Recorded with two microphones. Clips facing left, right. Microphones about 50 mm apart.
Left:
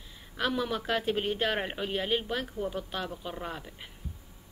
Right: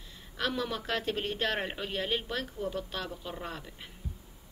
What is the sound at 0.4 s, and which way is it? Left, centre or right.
Speech, centre.